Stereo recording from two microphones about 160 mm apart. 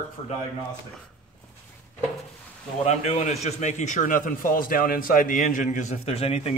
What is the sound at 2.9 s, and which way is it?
A man's voice, 45° left (ahead or behind).